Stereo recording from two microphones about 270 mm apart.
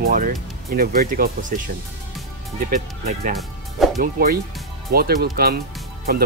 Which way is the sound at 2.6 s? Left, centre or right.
Right.